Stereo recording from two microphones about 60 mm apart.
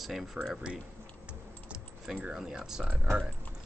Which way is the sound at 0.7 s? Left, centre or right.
Right.